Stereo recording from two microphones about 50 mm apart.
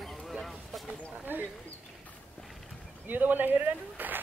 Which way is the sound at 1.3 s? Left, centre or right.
Right.